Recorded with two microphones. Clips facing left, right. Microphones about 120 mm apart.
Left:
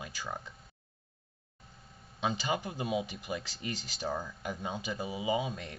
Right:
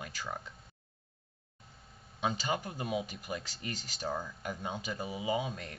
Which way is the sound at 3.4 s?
45° right (ahead or behind).